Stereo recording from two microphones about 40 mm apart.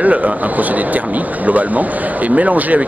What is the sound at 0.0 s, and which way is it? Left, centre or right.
Speech, right.